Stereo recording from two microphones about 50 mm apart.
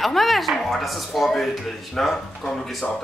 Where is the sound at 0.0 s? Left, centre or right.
Centre.